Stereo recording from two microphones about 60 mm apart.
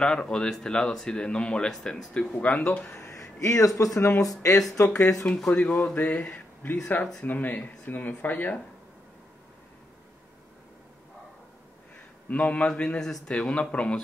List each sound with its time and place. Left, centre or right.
0.0 s speech: centre
2.9 s speech: left
4.2 s speech: left
5.5 s speech: left
12.3 s speech: left